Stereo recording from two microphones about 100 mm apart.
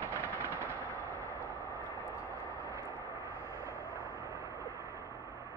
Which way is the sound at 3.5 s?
30° right (ahead or behind).